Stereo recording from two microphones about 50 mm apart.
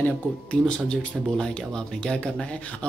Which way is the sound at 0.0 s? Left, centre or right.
Left.